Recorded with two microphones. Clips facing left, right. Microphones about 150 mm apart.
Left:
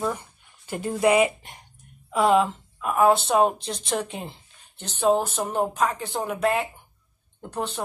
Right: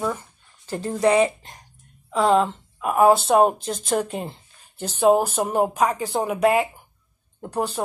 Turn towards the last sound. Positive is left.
turn(degrees=-5)  # may be behind; listen again after turning